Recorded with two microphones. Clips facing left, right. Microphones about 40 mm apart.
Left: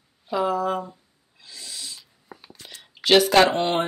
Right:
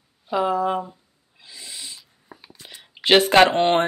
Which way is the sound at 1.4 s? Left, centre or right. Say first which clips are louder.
Even; centre.